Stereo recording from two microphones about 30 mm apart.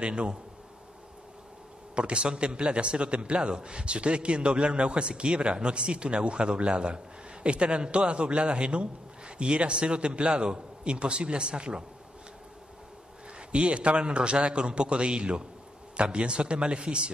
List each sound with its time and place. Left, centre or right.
0.0 s a man's voice: right
2.0 s a man's voice: right
13.5 s a man's voice: right